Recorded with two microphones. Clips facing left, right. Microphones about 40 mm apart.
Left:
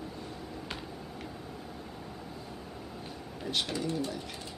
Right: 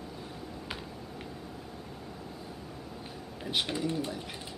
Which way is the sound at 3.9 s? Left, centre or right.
Centre.